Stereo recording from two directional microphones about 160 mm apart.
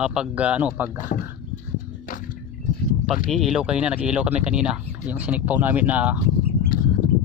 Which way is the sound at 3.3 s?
Centre (ahead or behind).